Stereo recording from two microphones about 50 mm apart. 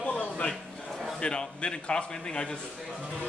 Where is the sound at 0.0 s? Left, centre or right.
Left.